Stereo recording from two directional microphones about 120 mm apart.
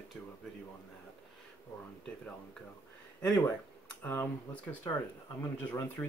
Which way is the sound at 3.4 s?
15° left (ahead or behind).